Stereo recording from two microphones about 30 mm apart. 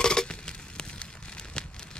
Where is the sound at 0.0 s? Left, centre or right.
Left.